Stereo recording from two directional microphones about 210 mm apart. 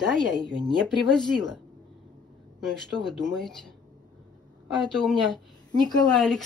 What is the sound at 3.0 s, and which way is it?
Speech, centre (ahead or behind).